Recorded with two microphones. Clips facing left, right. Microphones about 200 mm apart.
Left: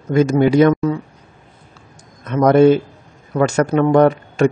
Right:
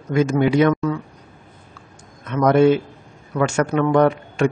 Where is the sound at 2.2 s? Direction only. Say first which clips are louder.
Left 4 dB; 40° left (ahead or behind).